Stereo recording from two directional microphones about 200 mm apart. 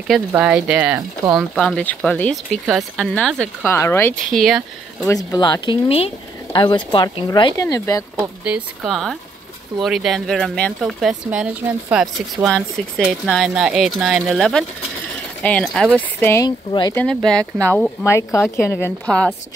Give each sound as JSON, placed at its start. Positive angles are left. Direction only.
{"t": 0.1, "sound": "speech", "side_deg": -5}
{"t": 4.4, "sound": "speech", "side_deg": 0}
{"t": 5.0, "sound": "speech", "side_deg": 15}
{"t": 8.5, "sound": "speech", "side_deg": 0}
{"t": 16.2, "sound": "speech", "side_deg": 15}
{"t": 16.9, "sound": "speech", "side_deg": 5}